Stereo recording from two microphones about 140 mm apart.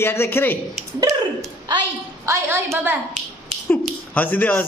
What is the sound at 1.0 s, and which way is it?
Speech, 25° right (ahead or behind).